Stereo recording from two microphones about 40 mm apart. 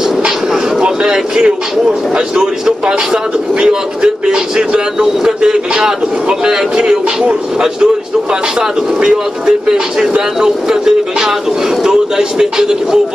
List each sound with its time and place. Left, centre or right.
0.7 s a man's voice: centre